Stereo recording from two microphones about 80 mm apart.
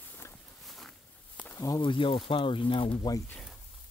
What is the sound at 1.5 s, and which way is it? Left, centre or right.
Speech, left.